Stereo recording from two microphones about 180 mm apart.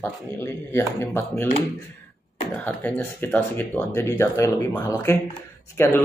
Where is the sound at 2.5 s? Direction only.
10° left (ahead or behind).